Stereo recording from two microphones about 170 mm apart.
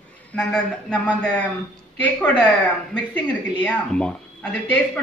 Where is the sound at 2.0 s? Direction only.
10° left (ahead or behind).